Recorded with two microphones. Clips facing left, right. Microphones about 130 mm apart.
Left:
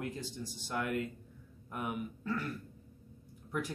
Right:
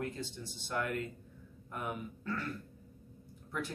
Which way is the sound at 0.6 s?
15° left (ahead or behind).